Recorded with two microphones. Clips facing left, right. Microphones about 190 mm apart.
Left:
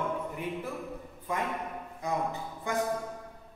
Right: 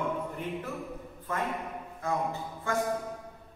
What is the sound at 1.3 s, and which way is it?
A man's voice, 15° left (ahead or behind).